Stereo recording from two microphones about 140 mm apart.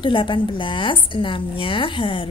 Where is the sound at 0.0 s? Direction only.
35° left (ahead or behind).